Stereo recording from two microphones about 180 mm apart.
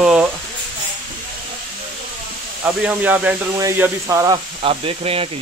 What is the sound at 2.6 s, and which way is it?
Speech, 10° right (ahead or behind).